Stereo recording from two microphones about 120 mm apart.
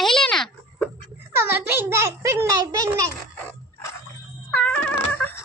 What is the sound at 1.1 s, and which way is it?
A child's voice, 20° right (ahead or behind).